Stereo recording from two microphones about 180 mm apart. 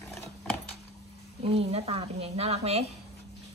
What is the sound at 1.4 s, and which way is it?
Speech, 35° right (ahead or behind).